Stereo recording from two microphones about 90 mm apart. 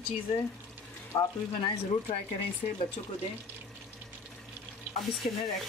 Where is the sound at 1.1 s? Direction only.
60° left (ahead or behind).